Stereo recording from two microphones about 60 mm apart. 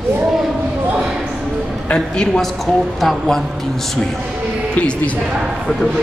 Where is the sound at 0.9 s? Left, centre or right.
Centre.